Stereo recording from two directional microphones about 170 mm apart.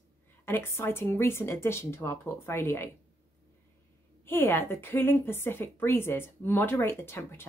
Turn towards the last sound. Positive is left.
turn(degrees=15)  # may be behind; listen again after turning